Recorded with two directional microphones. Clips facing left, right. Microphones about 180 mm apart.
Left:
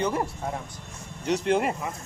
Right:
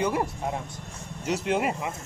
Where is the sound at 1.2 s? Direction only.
5° right (ahead or behind).